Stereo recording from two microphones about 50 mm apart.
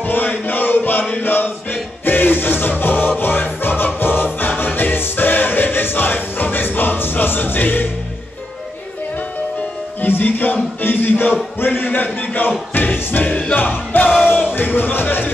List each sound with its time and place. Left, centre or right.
0.0 s chant: left
1.2 s music: left
10.0 s music: left
11.6 s speech: left
12.7 s music: left
14.2 s a sound: left